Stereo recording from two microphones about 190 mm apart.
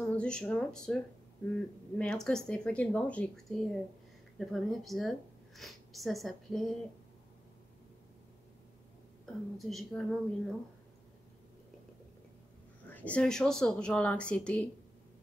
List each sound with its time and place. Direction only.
0.0 s speech: 5° left (ahead or behind)
9.2 s speech: centre (ahead or behind)
12.8 s speech: 10° left (ahead or behind)